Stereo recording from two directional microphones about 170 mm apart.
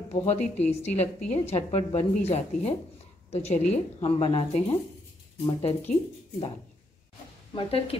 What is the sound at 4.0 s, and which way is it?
Speech, 35° left (ahead or behind).